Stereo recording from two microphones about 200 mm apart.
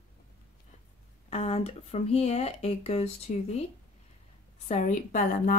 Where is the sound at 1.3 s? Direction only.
30° left (ahead or behind).